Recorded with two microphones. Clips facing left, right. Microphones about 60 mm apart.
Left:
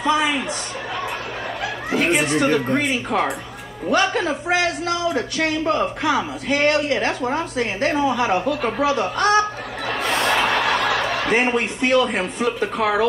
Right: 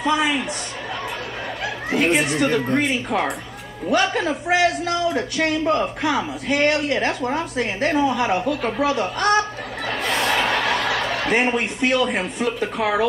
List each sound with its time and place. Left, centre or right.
0.0 s a man's voice: centre
2.0 s a man's voice: centre
10.0 s a sound: centre
10.7 s snicker: left
11.2 s a man's voice: centre